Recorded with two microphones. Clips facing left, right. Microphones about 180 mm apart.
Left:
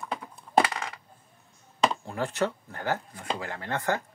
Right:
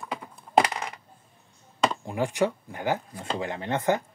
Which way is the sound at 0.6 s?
20° right (ahead or behind).